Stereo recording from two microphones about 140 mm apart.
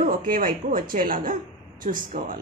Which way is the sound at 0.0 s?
90° right.